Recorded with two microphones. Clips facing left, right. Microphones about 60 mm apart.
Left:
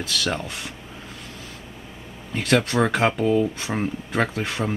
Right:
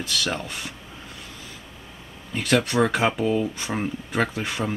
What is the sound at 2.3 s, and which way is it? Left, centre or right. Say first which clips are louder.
Speech: left 1 dB; centre.